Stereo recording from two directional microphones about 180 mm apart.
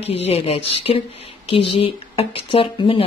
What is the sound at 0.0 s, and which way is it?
Speech, 35° left (ahead or behind).